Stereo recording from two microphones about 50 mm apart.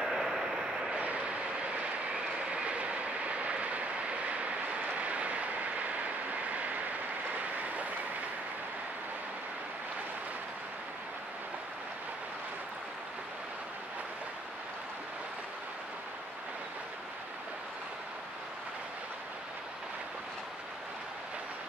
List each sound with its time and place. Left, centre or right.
0.0 s vehicle: centre
0.9 s vehicle: right
2.5 s vehicle: right